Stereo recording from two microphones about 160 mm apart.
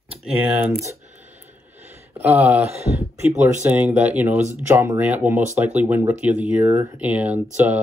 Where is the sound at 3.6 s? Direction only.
10° right (ahead or behind).